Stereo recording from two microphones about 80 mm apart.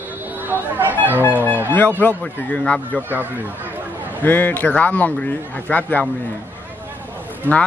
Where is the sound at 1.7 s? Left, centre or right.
Left.